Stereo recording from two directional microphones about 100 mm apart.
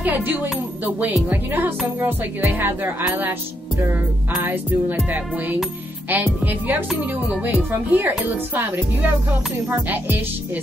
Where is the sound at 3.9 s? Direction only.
20° right (ahead or behind).